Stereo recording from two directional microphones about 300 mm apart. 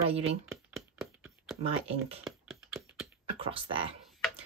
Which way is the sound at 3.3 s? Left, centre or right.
Centre.